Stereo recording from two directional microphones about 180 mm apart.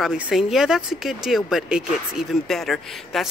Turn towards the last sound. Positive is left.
turn(degrees=0)  # may be behind; listen again after turning